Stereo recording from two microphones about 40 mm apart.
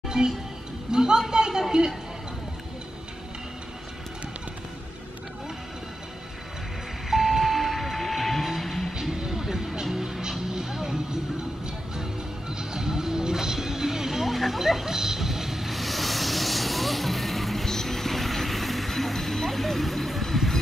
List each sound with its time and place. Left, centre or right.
0.1 s music: centre
0.9 s speech: centre
1.3 s a sound: centre
7.1 s vehicle: centre
9.1 s music: centre